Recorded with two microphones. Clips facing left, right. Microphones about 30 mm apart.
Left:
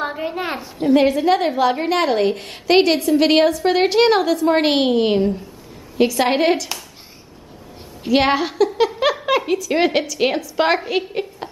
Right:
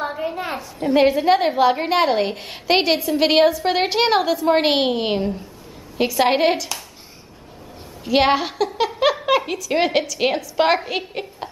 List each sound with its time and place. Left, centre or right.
0.0 s a sound: centre
0.9 s a woman's voice: centre
8.1 s speech: centre